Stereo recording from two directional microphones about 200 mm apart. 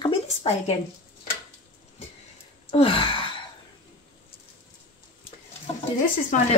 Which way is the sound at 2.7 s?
25° left (ahead or behind).